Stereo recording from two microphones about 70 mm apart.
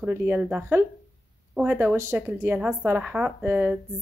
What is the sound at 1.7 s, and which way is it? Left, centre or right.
Speech, right.